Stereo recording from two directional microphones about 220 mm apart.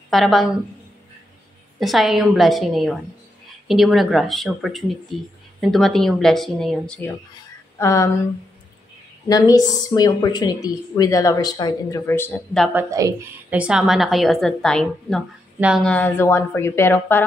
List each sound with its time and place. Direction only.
0.1 s a woman's voice: centre (ahead or behind)
1.8 s a woman's voice: centre (ahead or behind)
7.8 s speech: 15° left (ahead or behind)
9.3 s speech: 15° left (ahead or behind)
12.9 s a woman's voice: 10° right (ahead or behind); by 17.2 s 10° left (ahead or behind)